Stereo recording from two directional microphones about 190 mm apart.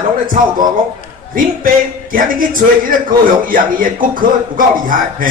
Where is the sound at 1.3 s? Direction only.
45° right (ahead or behind).